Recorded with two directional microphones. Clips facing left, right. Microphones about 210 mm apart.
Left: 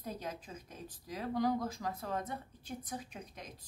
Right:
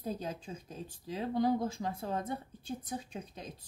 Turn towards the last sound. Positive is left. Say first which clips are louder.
# right 4 dB
turn(degrees=-30)  # may be behind; listen again after turning